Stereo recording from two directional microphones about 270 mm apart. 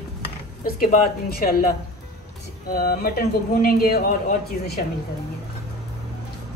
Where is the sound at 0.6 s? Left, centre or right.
Left.